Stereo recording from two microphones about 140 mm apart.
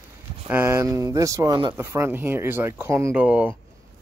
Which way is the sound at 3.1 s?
10° right (ahead or behind).